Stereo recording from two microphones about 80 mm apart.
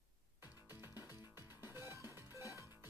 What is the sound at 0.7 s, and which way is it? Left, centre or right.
Music, right.